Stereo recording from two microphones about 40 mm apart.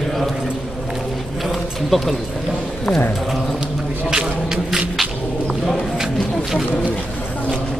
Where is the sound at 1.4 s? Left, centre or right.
Centre.